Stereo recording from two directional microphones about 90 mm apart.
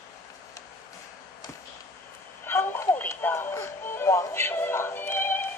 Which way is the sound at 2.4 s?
25° left (ahead or behind).